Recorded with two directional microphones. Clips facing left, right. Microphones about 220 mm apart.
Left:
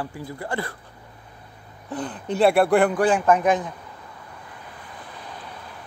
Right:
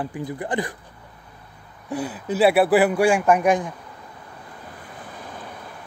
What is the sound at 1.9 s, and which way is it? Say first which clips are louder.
Speech: right 2 dB; 10° right (ahead or behind).